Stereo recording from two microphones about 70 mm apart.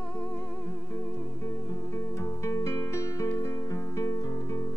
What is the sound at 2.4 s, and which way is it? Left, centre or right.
Music, left.